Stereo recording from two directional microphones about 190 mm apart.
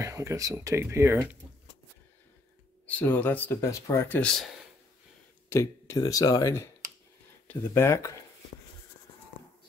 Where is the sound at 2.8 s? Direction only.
10° left (ahead or behind).